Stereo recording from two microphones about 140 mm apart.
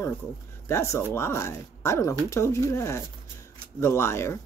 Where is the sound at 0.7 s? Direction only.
20° left (ahead or behind).